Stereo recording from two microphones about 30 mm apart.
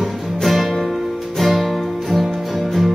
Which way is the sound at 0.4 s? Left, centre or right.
Centre.